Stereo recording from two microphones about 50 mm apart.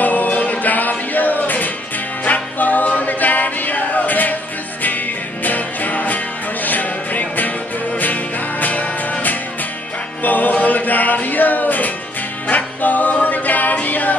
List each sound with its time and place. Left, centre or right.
0.0 s music: left